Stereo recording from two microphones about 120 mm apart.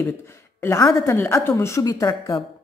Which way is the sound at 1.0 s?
20° left (ahead or behind).